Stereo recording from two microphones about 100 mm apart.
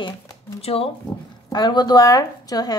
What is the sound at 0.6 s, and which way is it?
Speech, 75° left (ahead or behind).